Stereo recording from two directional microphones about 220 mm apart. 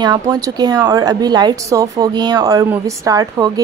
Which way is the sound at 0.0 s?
20° right (ahead or behind).